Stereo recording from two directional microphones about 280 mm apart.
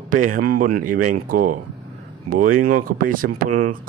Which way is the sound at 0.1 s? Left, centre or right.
Right.